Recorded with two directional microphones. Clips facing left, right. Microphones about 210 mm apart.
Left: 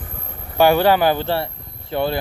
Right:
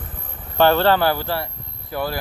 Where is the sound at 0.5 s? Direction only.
10° left (ahead or behind).